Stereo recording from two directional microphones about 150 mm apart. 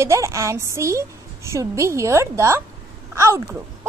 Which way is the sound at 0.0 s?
20° right (ahead or behind).